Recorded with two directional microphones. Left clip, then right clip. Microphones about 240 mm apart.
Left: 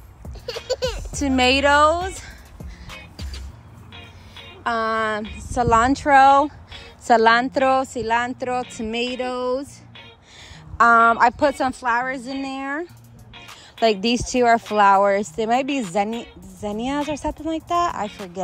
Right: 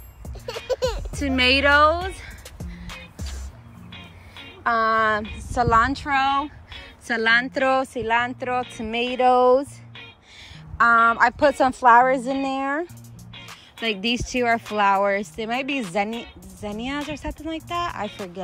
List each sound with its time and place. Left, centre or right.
0.2 s music: centre
1.1 s music: centre
4.6 s a woman's voice: centre
7.2 s a woman's voice: centre
10.8 s a woman's voice: centre
11.8 s a woman's voice: centre
14.0 s speech: left
14.7 s a woman's voice: centre